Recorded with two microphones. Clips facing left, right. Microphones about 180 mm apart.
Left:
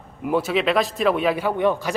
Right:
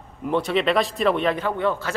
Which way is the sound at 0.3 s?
5° left (ahead or behind).